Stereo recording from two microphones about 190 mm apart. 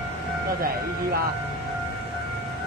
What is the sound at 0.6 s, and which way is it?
Speech, 55° right (ahead or behind).